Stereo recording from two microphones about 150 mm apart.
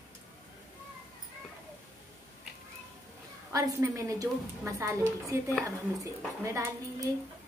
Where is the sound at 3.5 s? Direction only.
20° right (ahead or behind).